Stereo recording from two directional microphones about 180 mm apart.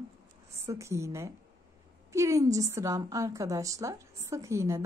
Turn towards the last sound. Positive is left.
turn(degrees=-15)  # may be behind; listen again after turning